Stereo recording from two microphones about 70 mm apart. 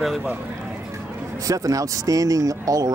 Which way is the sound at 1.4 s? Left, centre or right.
Right.